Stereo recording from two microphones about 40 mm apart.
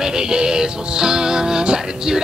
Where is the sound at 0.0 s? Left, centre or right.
Centre.